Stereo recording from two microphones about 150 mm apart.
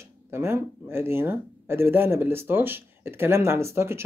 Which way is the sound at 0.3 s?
15° right (ahead or behind).